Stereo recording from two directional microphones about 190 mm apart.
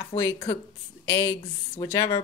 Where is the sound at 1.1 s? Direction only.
15° left (ahead or behind).